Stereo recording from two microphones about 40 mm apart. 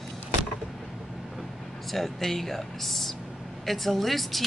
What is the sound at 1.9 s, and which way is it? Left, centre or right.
Speech, centre.